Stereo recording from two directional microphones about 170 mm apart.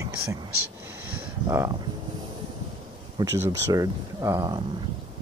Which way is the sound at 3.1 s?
20° right (ahead or behind).